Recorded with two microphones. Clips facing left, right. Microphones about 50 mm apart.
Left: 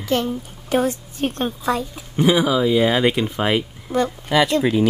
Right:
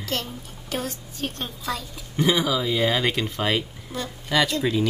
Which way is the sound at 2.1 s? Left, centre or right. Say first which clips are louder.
Left 5 dB; centre.